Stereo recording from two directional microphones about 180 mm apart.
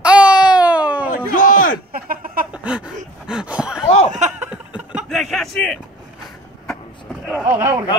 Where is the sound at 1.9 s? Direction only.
55° right (ahead or behind).